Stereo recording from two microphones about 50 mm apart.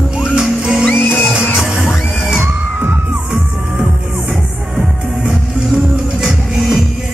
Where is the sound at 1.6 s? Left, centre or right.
Centre.